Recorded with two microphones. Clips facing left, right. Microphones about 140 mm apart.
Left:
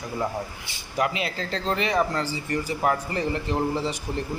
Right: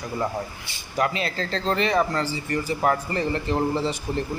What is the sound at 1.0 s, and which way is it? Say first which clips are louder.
Speech: right 1 dB; 15° left (ahead or behind).